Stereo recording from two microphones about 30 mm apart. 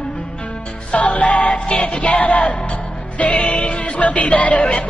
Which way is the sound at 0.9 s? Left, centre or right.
Left.